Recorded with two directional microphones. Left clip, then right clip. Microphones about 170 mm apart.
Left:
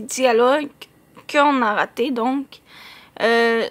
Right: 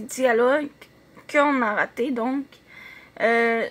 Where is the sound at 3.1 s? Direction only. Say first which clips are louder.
Left 3 dB; 20° left (ahead or behind).